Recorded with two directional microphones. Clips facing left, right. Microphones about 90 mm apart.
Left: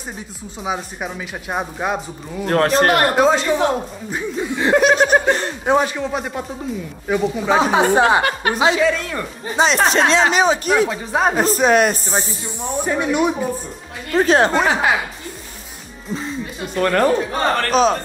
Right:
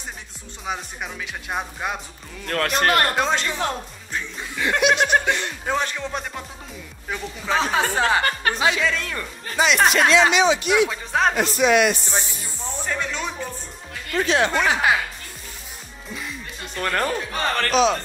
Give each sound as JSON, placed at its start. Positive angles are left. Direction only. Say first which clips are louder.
{"t": 0.7, "sound": "speech", "louder": "left 5 dB", "side_deg": 5}
{"t": 2.4, "sound": "speech", "louder": "left 6 dB", "side_deg": 35}
{"t": 3.2, "sound": "speech", "louder": "left 8 dB", "side_deg": 5}
{"t": 4.6, "sound": "speech", "louder": "left 5 dB", "side_deg": 35}
{"t": 5.7, "sound": "speech", "louder": "left 8 dB", "side_deg": 10}
{"t": 10.9, "sound": "speech", "louder": "left 3 dB", "side_deg": 5}
{"t": 11.3, "sound": "speech", "louder": "left 5 dB", "side_deg": 40}
{"t": 12.8, "sound": "speech", "louder": "left 9 dB", "side_deg": 15}
{"t": 14.1, "sound": "speech", "louder": "left 6 dB", "side_deg": 40}
{"t": 16.1, "sound": "music", "louder": "left 8 dB", "side_deg": 30}
{"t": 16.6, "sound": "speech", "louder": "left 7 dB", "side_deg": 15}
{"t": 17.0, "sound": "speech", "louder": "left 7 dB", "side_deg": 30}